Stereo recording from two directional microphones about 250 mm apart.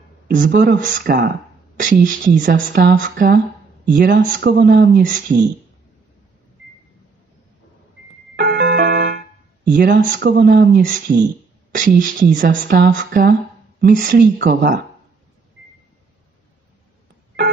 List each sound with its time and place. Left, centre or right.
0.3 s speech: right
8.4 s music: right
9.7 s speech: right